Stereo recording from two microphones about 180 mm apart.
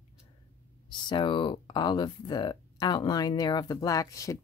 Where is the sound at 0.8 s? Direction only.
25° left (ahead or behind).